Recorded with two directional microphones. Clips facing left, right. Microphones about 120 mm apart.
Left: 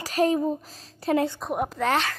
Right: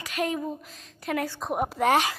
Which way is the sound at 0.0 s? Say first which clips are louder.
Left 6 dB; 35° left (ahead or behind).